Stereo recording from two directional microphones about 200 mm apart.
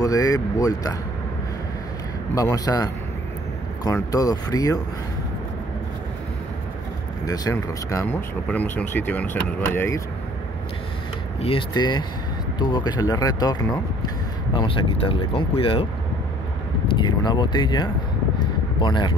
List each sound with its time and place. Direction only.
0.0 s speech: 15° left (ahead or behind)
2.3 s speech: 15° left (ahead or behind)
7.2 s speech: 20° left (ahead or behind)
11.4 s speech: 25° left (ahead or behind)
16.9 s speech: 20° left (ahead or behind)
18.4 s a sound: 20° left (ahead or behind)